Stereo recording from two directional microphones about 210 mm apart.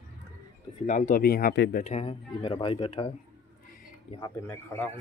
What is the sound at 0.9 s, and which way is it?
Speech, 35° left (ahead or behind).